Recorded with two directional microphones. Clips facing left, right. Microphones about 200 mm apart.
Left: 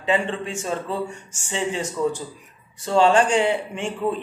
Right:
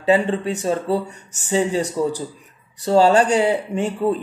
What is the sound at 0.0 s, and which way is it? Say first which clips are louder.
Speech: right 6 dB; 40° right (ahead or behind).